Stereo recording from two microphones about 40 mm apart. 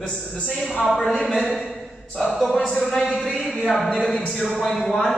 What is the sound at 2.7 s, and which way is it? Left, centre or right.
Speech, centre.